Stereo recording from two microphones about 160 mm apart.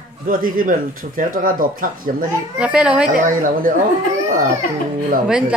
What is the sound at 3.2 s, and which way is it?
Speech, 60° right (ahead or behind).